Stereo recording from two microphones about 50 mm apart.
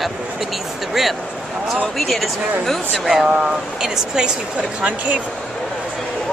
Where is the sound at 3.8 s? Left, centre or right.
Centre.